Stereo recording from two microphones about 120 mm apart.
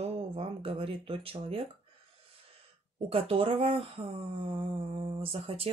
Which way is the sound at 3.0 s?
55° right (ahead or behind).